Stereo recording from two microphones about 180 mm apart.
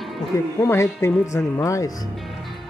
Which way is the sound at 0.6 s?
15° left (ahead or behind).